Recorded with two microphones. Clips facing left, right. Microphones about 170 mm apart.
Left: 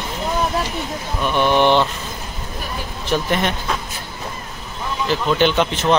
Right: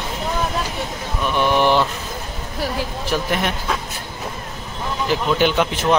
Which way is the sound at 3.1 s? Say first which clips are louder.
Left 3 dB; 5° right (ahead or behind).